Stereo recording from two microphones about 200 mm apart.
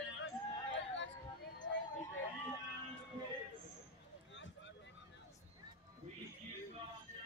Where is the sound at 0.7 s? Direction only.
65° left (ahead or behind).